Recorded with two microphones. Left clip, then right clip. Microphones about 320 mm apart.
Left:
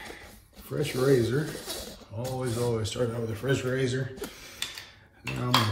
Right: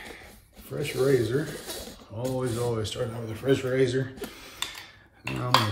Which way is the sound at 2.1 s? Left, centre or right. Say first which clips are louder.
Right 3 dB; centre.